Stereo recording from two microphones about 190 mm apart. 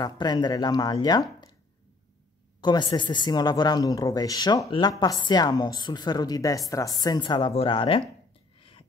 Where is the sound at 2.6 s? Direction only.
25° left (ahead or behind).